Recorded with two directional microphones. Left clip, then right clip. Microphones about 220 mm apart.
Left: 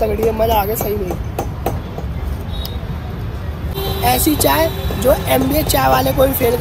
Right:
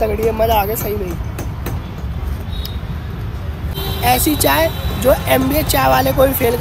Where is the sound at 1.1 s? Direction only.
30° left (ahead or behind).